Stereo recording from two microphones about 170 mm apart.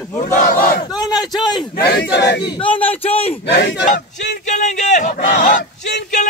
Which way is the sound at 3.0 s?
35° left (ahead or behind).